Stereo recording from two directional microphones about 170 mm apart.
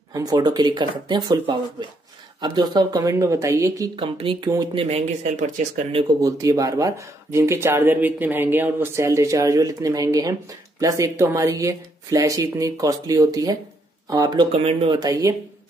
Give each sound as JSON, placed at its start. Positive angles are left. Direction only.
{"t": 0.1, "sound": "speech", "side_deg": -20}
{"t": 4.0, "sound": "speech", "side_deg": -30}
{"t": 6.2, "sound": "speech", "side_deg": -20}
{"t": 14.5, "sound": "speech", "side_deg": -35}
{"t": 14.9, "sound": "speech", "side_deg": -20}